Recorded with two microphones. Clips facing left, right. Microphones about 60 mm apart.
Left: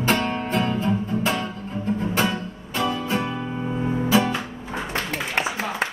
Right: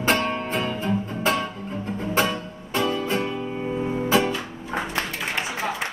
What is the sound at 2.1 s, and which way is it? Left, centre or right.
Music, right.